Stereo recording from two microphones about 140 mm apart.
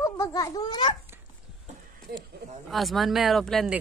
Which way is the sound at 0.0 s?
25° left (ahead or behind).